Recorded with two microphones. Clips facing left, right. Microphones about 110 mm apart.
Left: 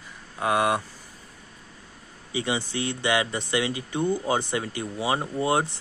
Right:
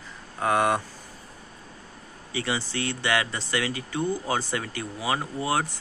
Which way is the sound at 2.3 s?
20° left (ahead or behind).